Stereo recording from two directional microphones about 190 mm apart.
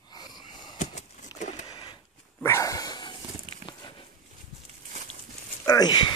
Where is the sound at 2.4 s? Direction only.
15° left (ahead or behind).